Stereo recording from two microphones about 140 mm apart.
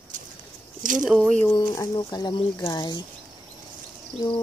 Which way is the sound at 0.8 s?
70° right (ahead or behind).